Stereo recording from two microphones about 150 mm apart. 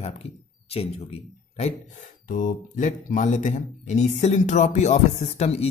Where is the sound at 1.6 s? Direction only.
55° left (ahead or behind).